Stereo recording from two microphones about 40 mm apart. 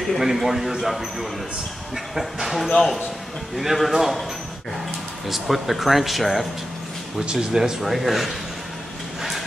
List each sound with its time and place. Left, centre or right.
0.2 s speech: centre
2.4 s speech: centre
5.3 s speech: centre
7.3 s speech: centre